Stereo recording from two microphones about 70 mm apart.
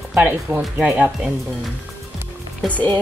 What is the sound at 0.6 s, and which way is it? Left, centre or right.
Speech, centre.